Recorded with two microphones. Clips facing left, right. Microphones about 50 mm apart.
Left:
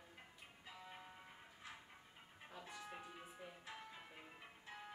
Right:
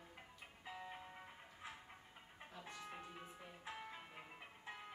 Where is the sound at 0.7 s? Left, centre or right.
Centre.